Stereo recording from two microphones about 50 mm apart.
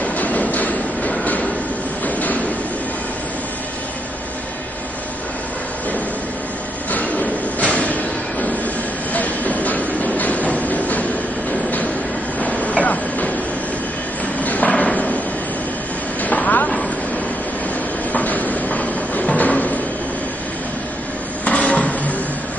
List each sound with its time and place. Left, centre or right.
0.0 s train: left
6.9 s a sound: left
9.1 s train: left
10.5 s music: left
12.4 s train: left
14.4 s a sound: left
16.2 s vehicle: left
18.1 s music: left
21.5 s a sound: left